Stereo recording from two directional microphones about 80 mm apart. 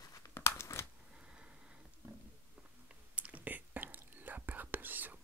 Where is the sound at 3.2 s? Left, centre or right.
Centre.